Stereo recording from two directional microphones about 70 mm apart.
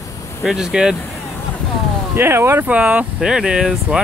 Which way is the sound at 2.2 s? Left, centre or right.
Right.